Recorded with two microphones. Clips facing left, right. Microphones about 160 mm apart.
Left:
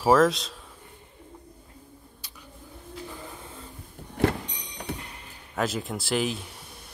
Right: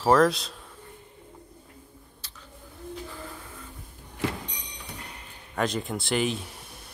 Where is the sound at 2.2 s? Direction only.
10° left (ahead or behind).